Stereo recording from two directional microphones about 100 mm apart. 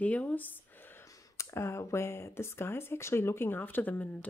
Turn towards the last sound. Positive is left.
turn(degrees=20)  # may be behind; listen again after turning